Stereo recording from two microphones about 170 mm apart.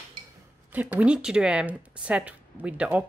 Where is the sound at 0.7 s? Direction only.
10° right (ahead or behind).